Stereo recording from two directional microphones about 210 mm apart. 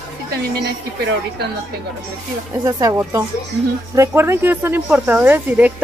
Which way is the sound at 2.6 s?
15° right (ahead or behind).